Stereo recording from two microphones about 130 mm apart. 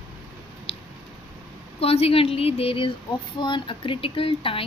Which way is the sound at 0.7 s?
50° left (ahead or behind).